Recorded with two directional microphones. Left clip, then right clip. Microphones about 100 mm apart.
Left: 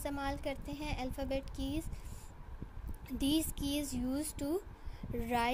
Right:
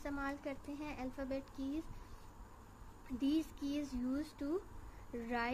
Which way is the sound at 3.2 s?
65° left (ahead or behind).